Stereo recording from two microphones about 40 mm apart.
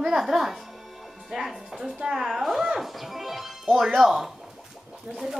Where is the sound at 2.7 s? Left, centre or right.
Centre.